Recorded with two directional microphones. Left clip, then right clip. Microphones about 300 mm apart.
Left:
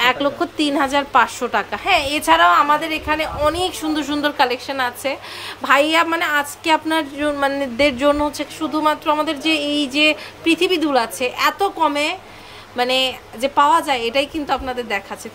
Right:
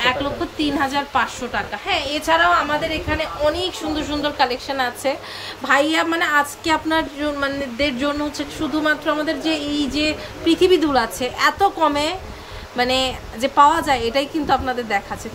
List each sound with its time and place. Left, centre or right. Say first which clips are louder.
0.0 s a woman's voice: left 3 dB; centre